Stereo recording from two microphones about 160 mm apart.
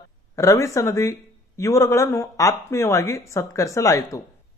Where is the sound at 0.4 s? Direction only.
20° left (ahead or behind).